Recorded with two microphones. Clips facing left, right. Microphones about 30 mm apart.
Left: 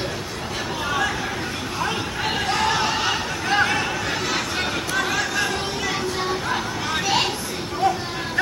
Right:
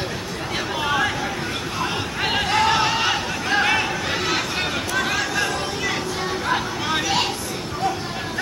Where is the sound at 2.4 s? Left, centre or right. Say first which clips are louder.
Right 3 dB; centre.